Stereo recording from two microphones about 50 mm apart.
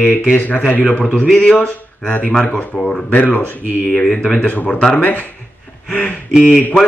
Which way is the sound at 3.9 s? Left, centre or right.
Centre.